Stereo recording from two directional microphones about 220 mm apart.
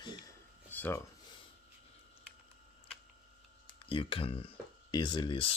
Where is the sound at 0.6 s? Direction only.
10° left (ahead or behind).